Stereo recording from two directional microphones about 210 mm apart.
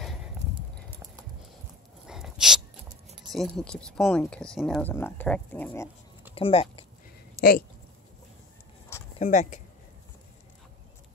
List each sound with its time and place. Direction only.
0.0 s a sound: centre (ahead or behind)
0.8 s clip-clop: 15° right (ahead or behind)
2.0 s a sound: centre (ahead or behind)
3.3 s speech: 5° left (ahead or behind)
4.8 s speech: 10° left (ahead or behind)
6.3 s speech: 25° left (ahead or behind)
7.4 s speech: 15° right (ahead or behind)
9.2 s speech: 35° left (ahead or behind)